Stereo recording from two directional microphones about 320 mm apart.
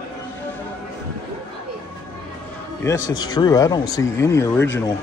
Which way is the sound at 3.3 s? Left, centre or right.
Centre.